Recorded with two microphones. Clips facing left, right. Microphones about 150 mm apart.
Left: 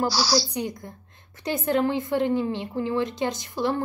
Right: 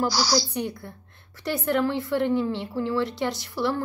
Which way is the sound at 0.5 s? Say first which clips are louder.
Even; 15° left (ahead or behind).